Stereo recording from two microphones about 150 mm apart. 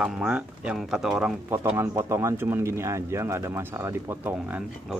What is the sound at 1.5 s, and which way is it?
Speech, 15° right (ahead or behind).